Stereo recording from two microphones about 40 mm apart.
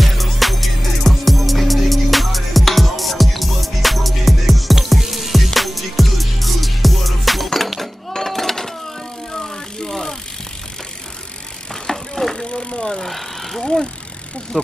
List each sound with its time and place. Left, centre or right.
0.0 s music: centre
7.4 s a sound: centre
9.3 s bicycle: centre
11.7 s vehicle: centre
12.4 s vehicle: left
13.0 s a sound: centre
13.6 s vehicle: centre